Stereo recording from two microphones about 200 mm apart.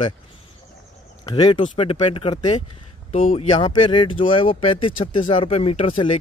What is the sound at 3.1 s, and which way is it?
Speech, 45° left (ahead or behind).